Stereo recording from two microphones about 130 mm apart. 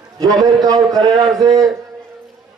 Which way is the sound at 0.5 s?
30° right (ahead or behind).